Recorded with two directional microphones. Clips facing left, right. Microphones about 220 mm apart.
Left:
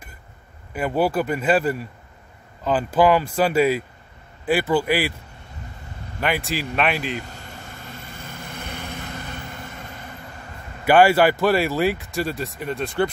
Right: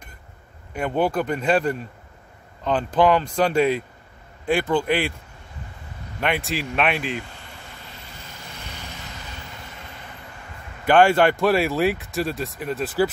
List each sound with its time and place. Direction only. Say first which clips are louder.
0.7 s speech: left 1 dB; 5° left (ahead or behind)
6.1 s speech: even; centre (ahead or behind)
7.7 s vehicle: left 4 dB; 50° left (ahead or behind)
10.9 s speech: left 1 dB; 5° left (ahead or behind)